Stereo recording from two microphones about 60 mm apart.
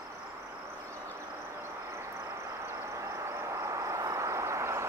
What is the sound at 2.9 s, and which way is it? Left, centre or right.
Vehicle, right.